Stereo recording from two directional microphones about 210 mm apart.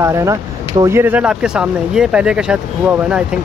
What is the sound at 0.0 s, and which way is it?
Speech, 15° right (ahead or behind).